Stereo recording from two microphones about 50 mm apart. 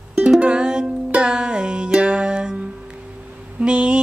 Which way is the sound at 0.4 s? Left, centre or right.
Centre.